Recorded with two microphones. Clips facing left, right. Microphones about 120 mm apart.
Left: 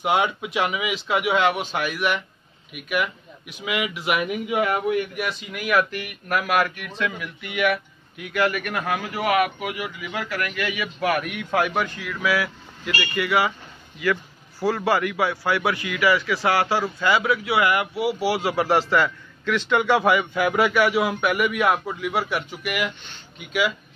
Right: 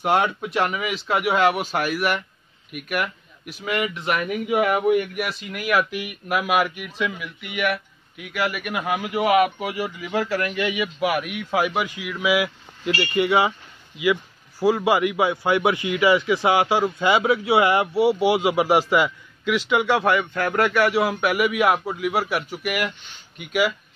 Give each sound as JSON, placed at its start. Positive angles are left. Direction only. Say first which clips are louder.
{"t": 0.0, "sound": "speech", "louder": "right 1 dB", "side_deg": 5}
{"t": 4.5, "sound": "a man's voice", "louder": "right 5 dB", "side_deg": -5}
{"t": 11.1, "sound": "a man's voice", "louder": "left 3 dB", "side_deg": -5}
{"t": 14.6, "sound": "a man's voice", "louder": "right 3 dB", "side_deg": -15}